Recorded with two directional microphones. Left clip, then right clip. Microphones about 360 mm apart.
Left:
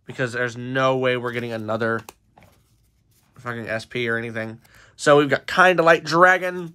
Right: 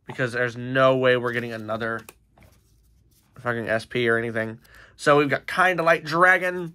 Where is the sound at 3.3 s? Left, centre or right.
Centre.